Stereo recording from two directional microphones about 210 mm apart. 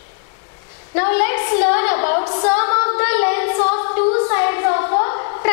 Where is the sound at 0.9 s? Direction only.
15° left (ahead or behind).